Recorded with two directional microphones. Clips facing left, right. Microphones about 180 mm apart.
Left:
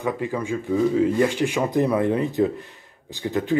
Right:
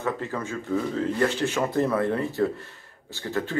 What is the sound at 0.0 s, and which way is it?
Speech, 15° left (ahead or behind).